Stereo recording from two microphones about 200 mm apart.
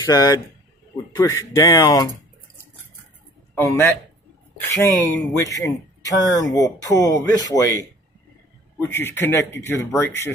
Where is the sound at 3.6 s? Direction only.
15° left (ahead or behind).